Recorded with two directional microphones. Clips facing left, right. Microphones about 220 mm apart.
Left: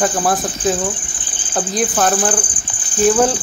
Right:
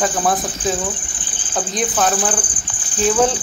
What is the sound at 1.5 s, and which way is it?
Speech, centre (ahead or behind).